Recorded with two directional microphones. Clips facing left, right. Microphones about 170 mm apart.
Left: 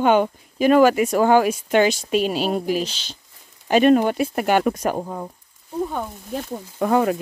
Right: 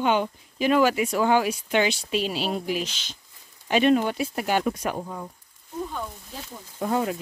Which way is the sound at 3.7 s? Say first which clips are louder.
Left 5 dB; 45° left (ahead or behind).